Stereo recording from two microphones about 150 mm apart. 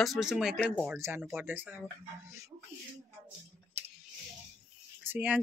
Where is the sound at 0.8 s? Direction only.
15° right (ahead or behind).